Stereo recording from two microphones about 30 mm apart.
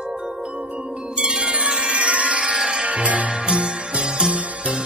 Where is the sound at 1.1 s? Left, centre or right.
Right.